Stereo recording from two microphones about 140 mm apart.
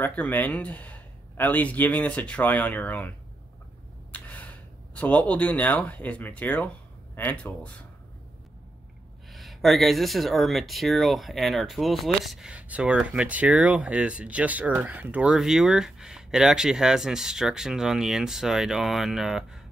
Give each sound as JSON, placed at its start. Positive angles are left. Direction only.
{"t": 0.0, "sound": "speech", "side_deg": 10}
{"t": 4.1, "sound": "speech", "side_deg": 10}
{"t": 9.3, "sound": "speech", "side_deg": 0}